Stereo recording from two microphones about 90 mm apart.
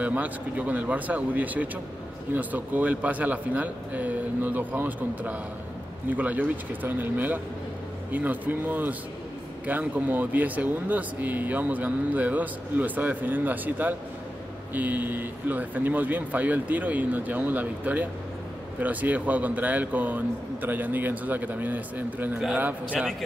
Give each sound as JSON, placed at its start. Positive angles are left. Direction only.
{"t": 0.0, "sound": "speech", "side_deg": -20}